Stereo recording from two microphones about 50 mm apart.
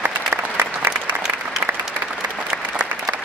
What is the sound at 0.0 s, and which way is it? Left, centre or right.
Applause, right.